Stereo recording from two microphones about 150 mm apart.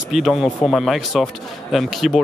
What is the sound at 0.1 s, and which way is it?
Speech, centre (ahead or behind).